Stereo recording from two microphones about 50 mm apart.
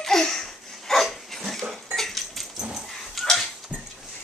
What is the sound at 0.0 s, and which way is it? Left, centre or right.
Laughter, centre.